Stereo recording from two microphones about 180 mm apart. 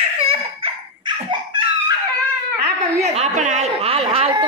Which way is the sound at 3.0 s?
40° right (ahead or behind).